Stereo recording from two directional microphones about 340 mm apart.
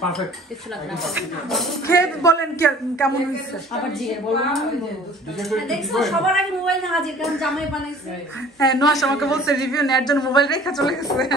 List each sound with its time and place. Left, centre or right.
1.0 s a woman's voice: centre
8.9 s a woman's voice: centre
10.1 s speech: centre
10.6 s a woman's voice: centre